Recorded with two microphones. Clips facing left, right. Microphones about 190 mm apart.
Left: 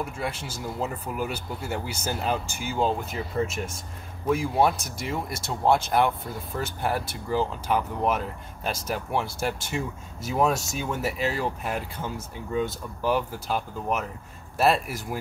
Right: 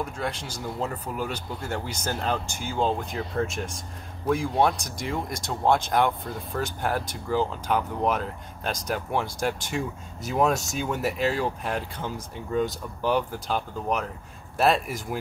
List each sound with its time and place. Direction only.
0.0 s speech: 5° left (ahead or behind)